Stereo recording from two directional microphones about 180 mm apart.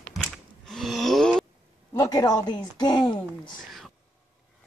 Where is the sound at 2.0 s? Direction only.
20° left (ahead or behind).